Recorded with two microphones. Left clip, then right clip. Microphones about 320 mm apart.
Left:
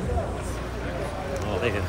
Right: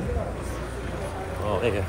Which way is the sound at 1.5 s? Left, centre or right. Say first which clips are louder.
Right 3 dB; centre.